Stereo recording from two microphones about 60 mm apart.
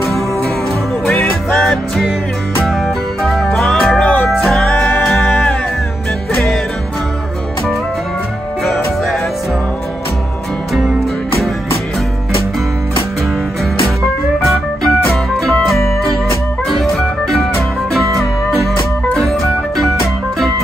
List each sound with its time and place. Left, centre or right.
1.5 s music: centre
3.3 s music: centre
4.0 s music: left
4.4 s music: centre
14.4 s music: centre